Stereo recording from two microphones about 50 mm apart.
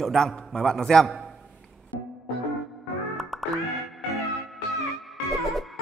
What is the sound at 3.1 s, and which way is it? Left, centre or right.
Music, centre.